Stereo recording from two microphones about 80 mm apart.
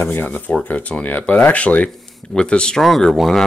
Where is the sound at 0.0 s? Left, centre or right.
Left.